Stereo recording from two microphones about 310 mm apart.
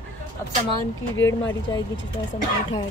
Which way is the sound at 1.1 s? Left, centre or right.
Left.